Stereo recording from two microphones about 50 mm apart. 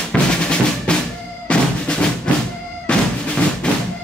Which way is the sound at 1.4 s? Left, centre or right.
Left.